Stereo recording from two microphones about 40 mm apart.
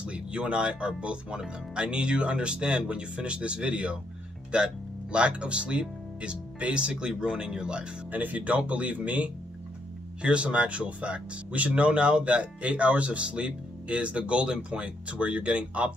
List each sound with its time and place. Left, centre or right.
0.0 s speech: right
8.1 s speech: right